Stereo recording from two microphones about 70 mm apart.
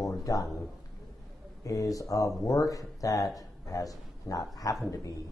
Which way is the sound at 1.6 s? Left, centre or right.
Left.